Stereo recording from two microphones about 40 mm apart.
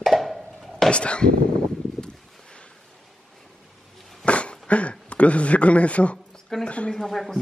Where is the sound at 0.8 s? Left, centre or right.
Left.